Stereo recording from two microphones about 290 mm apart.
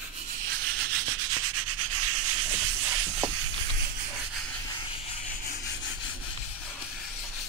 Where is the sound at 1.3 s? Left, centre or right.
Right.